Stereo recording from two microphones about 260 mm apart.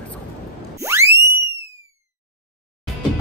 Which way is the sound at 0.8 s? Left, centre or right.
Centre.